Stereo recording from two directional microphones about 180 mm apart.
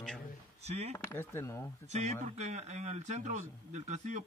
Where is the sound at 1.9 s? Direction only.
40° right (ahead or behind).